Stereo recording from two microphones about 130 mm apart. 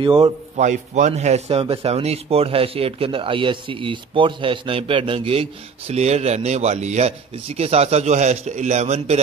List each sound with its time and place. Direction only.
0.0 s a man's voice: 40° right (ahead or behind)
0.6 s speech: 70° right (ahead or behind)